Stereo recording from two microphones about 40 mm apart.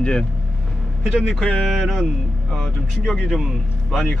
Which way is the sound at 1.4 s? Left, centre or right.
Left.